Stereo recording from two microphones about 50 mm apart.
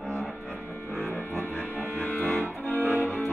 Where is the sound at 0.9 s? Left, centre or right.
Left.